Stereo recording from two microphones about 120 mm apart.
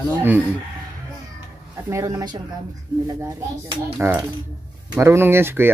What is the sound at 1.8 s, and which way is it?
Speech, 30° right (ahead or behind).